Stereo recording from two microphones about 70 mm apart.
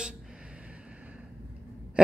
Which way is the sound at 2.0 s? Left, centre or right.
Centre.